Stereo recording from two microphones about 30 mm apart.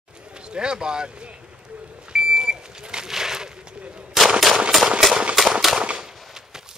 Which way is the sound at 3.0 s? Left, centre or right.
Centre.